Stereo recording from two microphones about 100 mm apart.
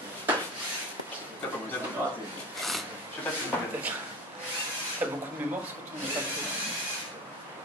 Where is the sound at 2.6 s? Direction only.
Centre (ahead or behind).